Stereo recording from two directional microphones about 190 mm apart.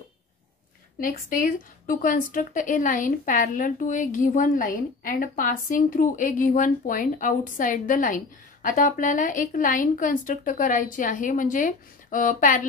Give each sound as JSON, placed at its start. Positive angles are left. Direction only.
{"t": 1.0, "sound": "a woman's voice", "side_deg": 45}